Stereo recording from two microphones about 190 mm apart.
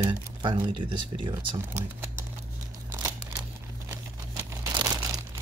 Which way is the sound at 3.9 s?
15° right (ahead or behind).